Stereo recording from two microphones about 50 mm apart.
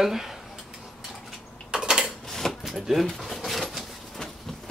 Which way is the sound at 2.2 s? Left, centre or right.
Centre.